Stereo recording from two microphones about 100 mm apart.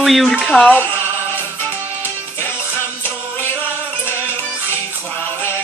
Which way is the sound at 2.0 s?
20° left (ahead or behind).